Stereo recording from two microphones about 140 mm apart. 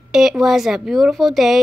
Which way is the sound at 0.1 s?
5° right (ahead or behind).